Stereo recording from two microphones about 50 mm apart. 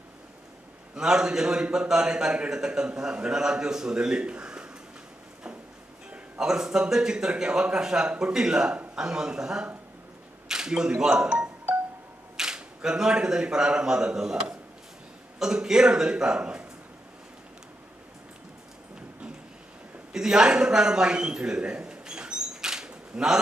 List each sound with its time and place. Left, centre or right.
0.9 s a man's voice: centre
6.0 s a man's voice: centre
12.4 s a man's voice: centre
20.1 s a sound: centre